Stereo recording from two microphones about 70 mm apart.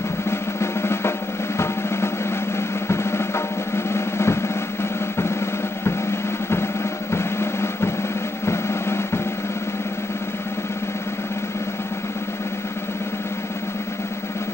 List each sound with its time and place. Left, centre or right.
0.3 s drum: left
2.9 s drum: left
7.1 s drum: left